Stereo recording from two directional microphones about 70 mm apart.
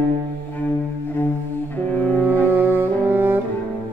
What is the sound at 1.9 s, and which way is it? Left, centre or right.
Cello, left.